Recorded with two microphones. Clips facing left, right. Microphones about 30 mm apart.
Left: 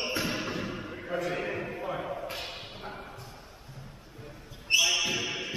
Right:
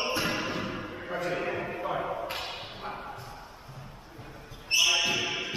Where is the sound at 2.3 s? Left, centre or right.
Right.